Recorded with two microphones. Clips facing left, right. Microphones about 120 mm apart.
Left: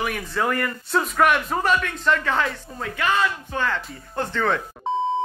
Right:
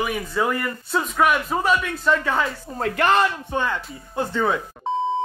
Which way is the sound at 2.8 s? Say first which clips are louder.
Right 5 dB; 55° right (ahead or behind).